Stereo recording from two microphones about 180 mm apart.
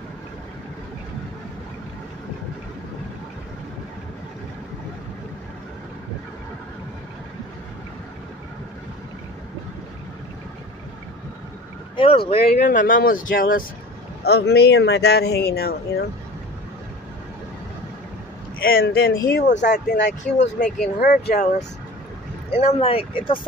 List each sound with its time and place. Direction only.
12.0 s speech: 30° left (ahead or behind)
12.5 s speech: 45° left (ahead or behind)
14.2 s speech: 65° left (ahead or behind)
18.6 s speech: 55° left (ahead or behind)
22.6 s speech: 35° left (ahead or behind)